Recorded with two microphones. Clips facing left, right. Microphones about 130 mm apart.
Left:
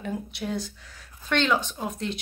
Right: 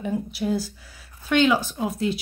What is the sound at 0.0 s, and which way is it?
Speech, 5° right (ahead or behind).